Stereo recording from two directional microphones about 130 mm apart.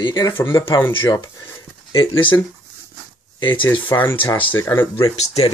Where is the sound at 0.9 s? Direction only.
40° left (ahead or behind).